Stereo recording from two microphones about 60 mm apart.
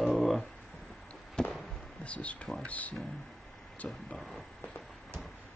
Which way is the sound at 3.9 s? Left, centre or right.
Centre.